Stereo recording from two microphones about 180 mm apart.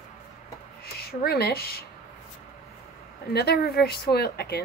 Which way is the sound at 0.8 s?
60° left (ahead or behind).